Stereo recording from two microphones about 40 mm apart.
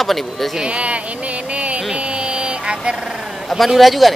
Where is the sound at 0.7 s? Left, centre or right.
Right.